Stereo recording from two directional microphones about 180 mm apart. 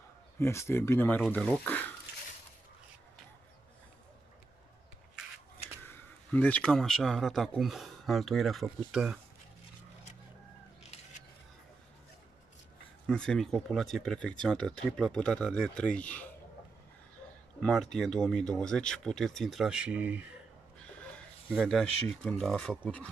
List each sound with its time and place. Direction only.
0.4 s speech: 15° left (ahead or behind)
5.9 s speech: 10° left (ahead or behind)
10.8 s a sound: 35° left (ahead or behind)
13.0 s speech: 5° left (ahead or behind)
17.6 s speech: 5° left (ahead or behind)
21.5 s speech: centre (ahead or behind)